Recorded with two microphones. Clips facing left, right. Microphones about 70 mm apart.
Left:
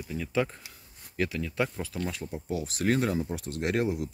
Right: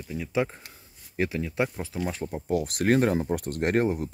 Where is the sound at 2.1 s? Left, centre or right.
Right.